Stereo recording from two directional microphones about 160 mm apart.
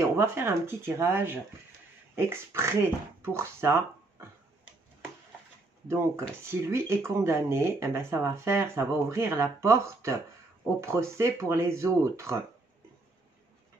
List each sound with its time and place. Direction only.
0.2 s speech: 15° right (ahead or behind)
5.9 s speech: 15° right (ahead or behind)